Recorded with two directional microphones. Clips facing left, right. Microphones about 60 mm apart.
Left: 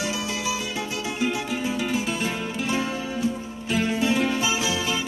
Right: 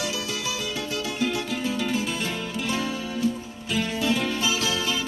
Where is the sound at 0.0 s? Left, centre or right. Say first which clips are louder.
Left 2 dB; left.